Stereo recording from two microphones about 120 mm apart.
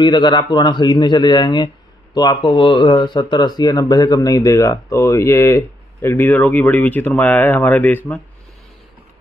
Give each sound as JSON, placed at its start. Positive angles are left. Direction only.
{"t": 0.0, "sound": "a man's voice", "side_deg": 40}